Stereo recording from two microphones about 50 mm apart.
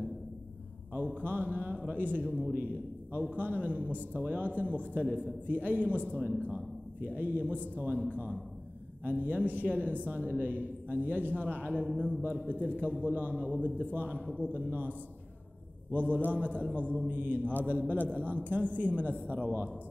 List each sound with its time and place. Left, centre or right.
0.9 s a man's voice: right